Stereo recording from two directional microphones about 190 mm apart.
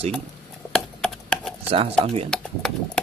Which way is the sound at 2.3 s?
5° left (ahead or behind).